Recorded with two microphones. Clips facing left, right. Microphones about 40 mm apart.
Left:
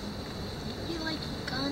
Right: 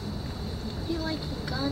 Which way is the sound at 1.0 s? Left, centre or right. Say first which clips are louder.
Right 3 dB; centre.